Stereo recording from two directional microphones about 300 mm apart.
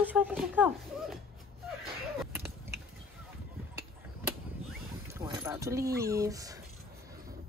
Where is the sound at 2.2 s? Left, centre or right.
Centre.